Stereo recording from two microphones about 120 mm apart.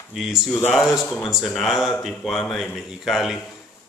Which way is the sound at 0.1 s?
5° right (ahead or behind).